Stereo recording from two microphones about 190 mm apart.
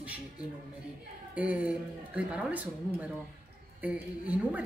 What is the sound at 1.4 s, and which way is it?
A woman's voice, 5° right (ahead or behind).